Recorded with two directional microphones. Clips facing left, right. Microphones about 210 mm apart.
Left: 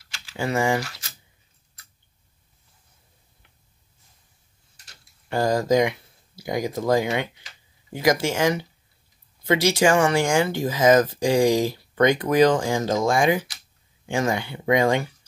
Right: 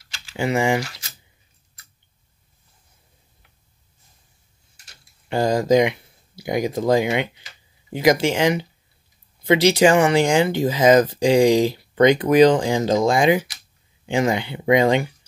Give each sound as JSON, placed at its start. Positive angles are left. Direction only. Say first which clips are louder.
{"t": 0.3, "sound": "speech", "louder": "right 3 dB", "side_deg": -20}
{"t": 5.3, "sound": "speech", "louder": "right 3 dB", "side_deg": -20}